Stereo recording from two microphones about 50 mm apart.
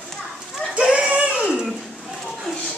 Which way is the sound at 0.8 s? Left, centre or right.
Centre.